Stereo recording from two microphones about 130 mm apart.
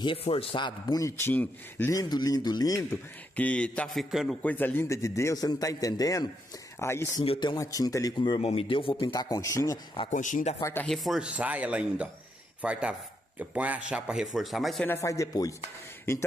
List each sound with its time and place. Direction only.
0.0 s a man's voice: 45° left (ahead or behind); by 1.3 s 25° left (ahead or behind)
1.3 s a man's voice: 10° left (ahead or behind)
1.9 s a man's voice: 30° left (ahead or behind)
3.3 s a man's voice: 10° left (ahead or behind)
4.4 s a man's voice: 15° left (ahead or behind)
7.2 s a man's voice: 35° left (ahead or behind)
7.6 s a man's voice: 25° left (ahead or behind)
8.4 s speech: 50° left (ahead or behind)
9.1 s a man's voice: 30° left (ahead or behind)
10.1 s speech: 75° left (ahead or behind)
10.6 s a man's voice: 15° left (ahead or behind)
10.9 s a man's voice: centre (ahead or behind)
14.9 s a man's voice: 25° left (ahead or behind)